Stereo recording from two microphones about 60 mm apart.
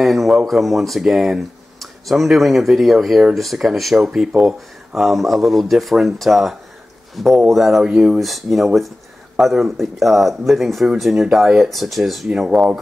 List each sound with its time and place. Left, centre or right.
0.0 s speech: centre
7.8 s speech: centre
8.2 s speech: centre